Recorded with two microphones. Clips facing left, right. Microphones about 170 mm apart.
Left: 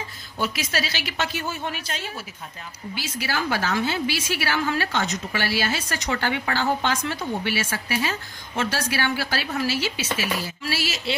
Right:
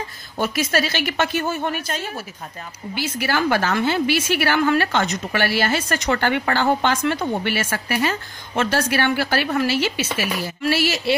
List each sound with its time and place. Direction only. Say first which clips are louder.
0.4 s a woman's voice: right 6 dB; 50° right (ahead or behind)
2.9 s a woman's voice: right 6 dB; 55° right (ahead or behind)